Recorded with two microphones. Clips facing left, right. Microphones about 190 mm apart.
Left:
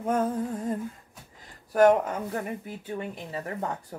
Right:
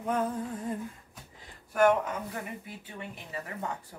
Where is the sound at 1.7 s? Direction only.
35° left (ahead or behind).